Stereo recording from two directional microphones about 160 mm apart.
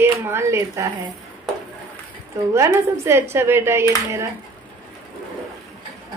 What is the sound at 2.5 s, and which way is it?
Speech, 15° right (ahead or behind).